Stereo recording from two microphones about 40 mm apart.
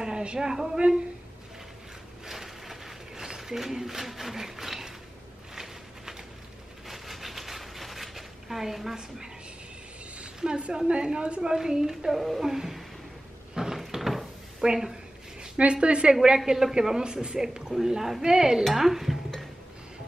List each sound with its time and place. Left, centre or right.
0.0 s a man's voice: right
2.2 s a sound: centre
10.1 s a sound: right
10.9 s speech: right
11.4 s speech: centre
12.1 s speech: centre
13.7 s door: centre
14.6 s speech: centre
15.5 s speech: right
16.7 s speech: centre
18.6 s stir: centre